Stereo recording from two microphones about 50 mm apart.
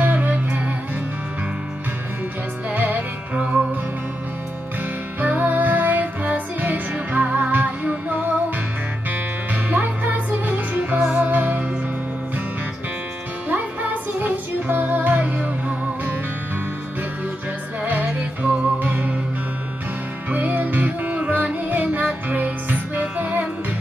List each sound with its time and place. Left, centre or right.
0.0 s music: right
2.7 s music: right
5.2 s music: right
14.2 s music: right
17.8 s music: right
20.2 s music: right